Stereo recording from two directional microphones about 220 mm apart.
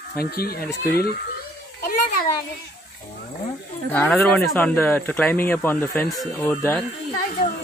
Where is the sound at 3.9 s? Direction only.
5° left (ahead or behind).